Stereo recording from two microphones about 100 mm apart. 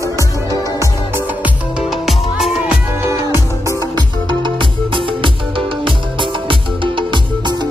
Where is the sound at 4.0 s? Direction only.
50° right (ahead or behind).